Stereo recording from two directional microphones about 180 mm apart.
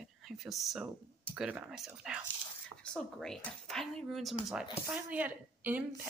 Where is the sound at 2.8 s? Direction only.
5° left (ahead or behind).